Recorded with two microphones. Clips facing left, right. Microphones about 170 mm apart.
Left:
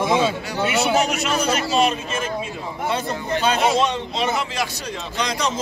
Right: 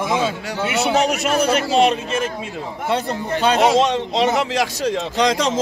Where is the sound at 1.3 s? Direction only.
60° right (ahead or behind).